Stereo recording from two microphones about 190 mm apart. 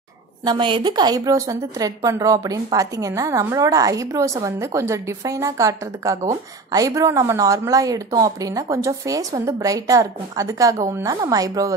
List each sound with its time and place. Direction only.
0.5 s a woman's voice: 25° right (ahead or behind)